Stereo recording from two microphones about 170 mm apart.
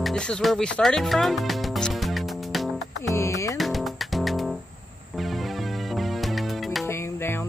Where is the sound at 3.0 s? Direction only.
15° left (ahead or behind).